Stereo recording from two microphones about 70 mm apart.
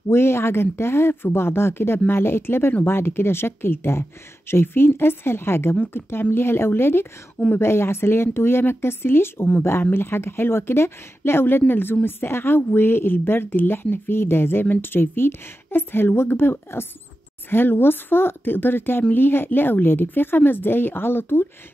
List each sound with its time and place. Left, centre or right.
0.1 s speech: left